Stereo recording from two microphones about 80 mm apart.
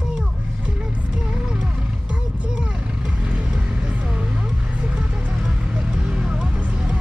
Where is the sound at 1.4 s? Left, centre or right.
Centre.